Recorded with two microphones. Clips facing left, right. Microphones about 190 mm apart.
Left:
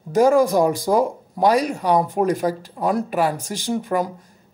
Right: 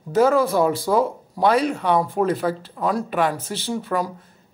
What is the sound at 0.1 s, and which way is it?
Speech, 15° left (ahead or behind).